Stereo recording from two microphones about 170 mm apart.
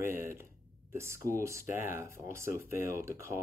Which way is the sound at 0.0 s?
15° right (ahead or behind).